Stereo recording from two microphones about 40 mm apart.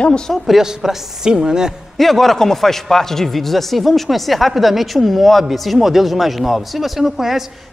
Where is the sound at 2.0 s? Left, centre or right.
Centre.